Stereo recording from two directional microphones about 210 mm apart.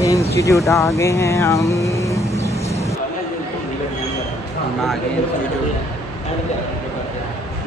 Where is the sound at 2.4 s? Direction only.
30° left (ahead or behind).